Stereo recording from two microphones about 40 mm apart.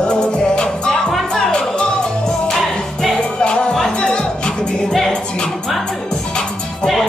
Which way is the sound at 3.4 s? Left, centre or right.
Left.